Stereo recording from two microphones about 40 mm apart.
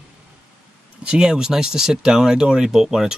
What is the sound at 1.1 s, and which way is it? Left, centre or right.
Speech, centre.